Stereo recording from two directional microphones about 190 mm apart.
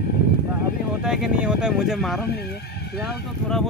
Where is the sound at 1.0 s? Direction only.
5° right (ahead or behind).